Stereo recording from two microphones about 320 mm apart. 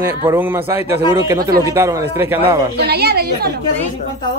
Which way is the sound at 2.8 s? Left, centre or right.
Right.